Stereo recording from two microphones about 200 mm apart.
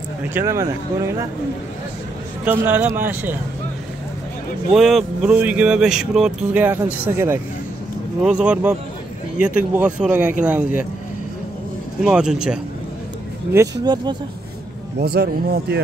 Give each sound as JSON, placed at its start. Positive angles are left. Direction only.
{"t": 0.2, "sound": "speech", "side_deg": -10}
{"t": 2.4, "sound": "speech", "side_deg": -10}
{"t": 4.7, "sound": "speech", "side_deg": 0}
{"t": 12.0, "sound": "speech", "side_deg": -5}
{"t": 13.5, "sound": "speech", "side_deg": -15}
{"t": 15.0, "sound": "a man's voice", "side_deg": -50}